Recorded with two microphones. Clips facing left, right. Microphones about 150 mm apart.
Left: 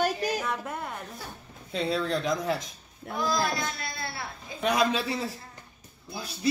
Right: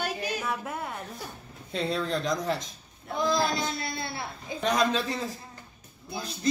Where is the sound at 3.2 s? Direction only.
25° right (ahead or behind).